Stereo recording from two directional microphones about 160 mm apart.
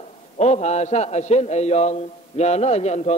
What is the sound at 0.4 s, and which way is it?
A man's voice, 45° left (ahead or behind).